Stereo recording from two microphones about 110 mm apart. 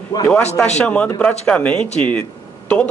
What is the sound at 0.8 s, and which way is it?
A man's voice, 10° left (ahead or behind).